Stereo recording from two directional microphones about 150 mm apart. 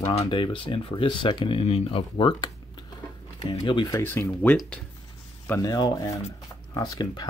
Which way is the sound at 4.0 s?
15° left (ahead or behind).